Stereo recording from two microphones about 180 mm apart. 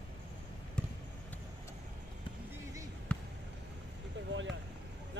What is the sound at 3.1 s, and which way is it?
Basketball bounce, 5° left (ahead or behind).